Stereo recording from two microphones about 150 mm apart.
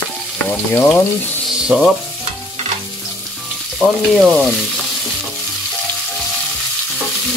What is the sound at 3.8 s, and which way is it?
Speech, centre (ahead or behind).